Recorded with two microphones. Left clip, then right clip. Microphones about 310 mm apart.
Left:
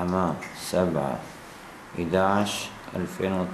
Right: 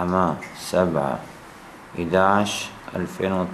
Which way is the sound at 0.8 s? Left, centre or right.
Centre.